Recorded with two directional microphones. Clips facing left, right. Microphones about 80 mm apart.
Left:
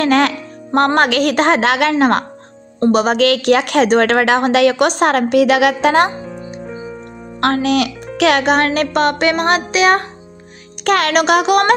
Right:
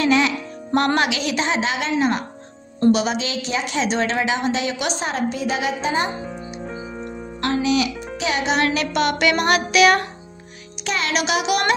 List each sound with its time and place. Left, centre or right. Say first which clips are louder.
0.0 s a child's voice: left 5 dB; left
0.7 s a woman's voice: left 6 dB; left
2.9 s speech: left 5 dB; left
3.2 s a woman's voice: left 12 dB; left
7.3 s a child's voice: left 5 dB; left
10.8 s a child's voice: left 9 dB; left